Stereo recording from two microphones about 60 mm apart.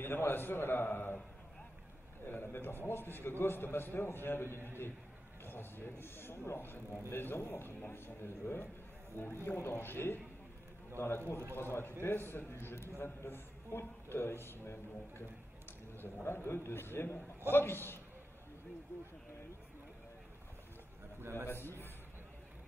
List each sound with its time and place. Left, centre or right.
0.0 s a man's voice: left
2.2 s a man's voice: left
16.3 s a man's voice: left
21.2 s a man's voice: right
21.5 s a man's voice: left